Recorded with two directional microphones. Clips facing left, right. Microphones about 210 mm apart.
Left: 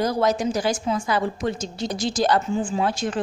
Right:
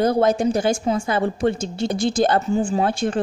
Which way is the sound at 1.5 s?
55° right (ahead or behind).